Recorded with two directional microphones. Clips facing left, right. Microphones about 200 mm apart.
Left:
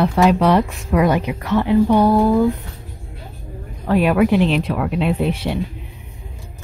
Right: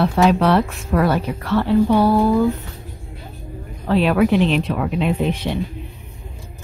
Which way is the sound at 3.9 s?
10° left (ahead or behind).